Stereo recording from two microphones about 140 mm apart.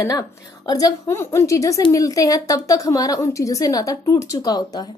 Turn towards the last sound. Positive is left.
turn(degrees=30)  # may be behind; listen again after turning